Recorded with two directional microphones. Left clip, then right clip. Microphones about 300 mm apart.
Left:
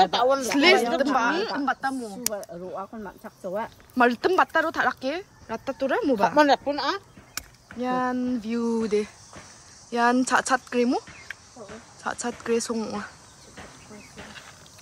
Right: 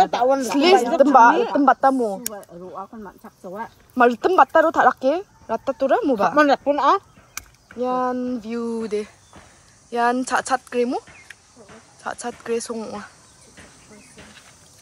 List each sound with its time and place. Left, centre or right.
0.1 s speech: right
0.5 s speech: centre
3.5 s speech: centre
6.3 s speech: centre
7.7 s speech: centre